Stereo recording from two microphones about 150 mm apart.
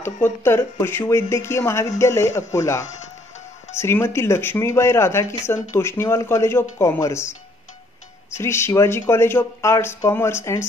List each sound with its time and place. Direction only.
0.0 s a man's voice: 15° left (ahead or behind)
8.4 s speech: 15° left (ahead or behind)